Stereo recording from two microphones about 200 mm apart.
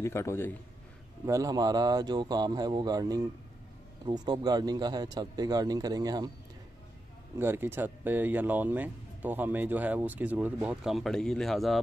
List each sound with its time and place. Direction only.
0.0 s a man's voice: 15° left (ahead or behind)
1.2 s speech: 15° right (ahead or behind)
7.3 s speech: 10° right (ahead or behind)